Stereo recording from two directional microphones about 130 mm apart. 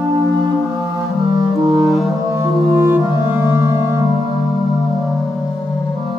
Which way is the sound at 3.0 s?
20° right (ahead or behind).